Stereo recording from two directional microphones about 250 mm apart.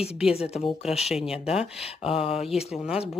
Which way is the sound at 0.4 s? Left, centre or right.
Left.